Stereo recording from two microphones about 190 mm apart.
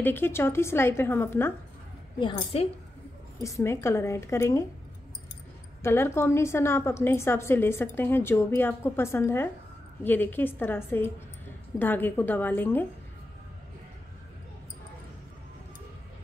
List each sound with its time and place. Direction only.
0.0 s a woman's voice: 10° left (ahead or behind)
2.3 s a woman's voice: 30° left (ahead or behind)
3.4 s a woman's voice: 15° left (ahead or behind)
5.8 s a woman's voice: 15° left (ahead or behind)